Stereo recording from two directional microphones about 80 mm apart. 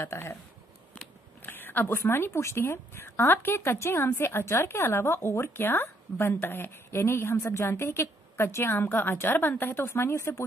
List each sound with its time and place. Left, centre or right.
0.0 s speech: left
1.4 s speech: left